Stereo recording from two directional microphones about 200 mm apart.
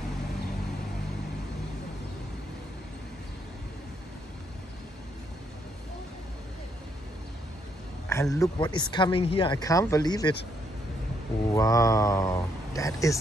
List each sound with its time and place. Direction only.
8.1 s speech: 15° left (ahead or behind)
11.5 s speech: 15° left (ahead or behind)